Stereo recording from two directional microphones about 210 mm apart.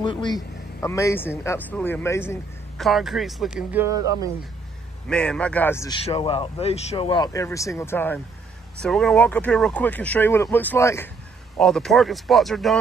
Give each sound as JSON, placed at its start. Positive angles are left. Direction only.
{"t": 0.0, "sound": "speech", "side_deg": 20}
{"t": 2.8, "sound": "speech", "side_deg": 0}
{"t": 5.1, "sound": "speech", "side_deg": 5}
{"t": 6.0, "sound": "speech", "side_deg": 25}